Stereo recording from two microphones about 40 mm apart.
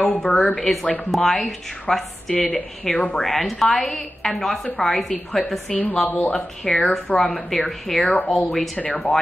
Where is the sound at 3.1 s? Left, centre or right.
Centre.